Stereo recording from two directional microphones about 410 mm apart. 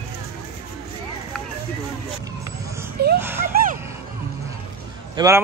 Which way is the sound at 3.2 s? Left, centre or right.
Centre.